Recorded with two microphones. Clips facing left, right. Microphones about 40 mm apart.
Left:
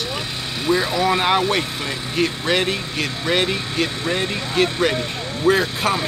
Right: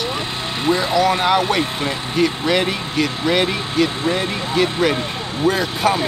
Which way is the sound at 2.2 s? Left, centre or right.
Centre.